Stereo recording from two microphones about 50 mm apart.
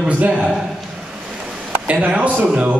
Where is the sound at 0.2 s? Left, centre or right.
Right.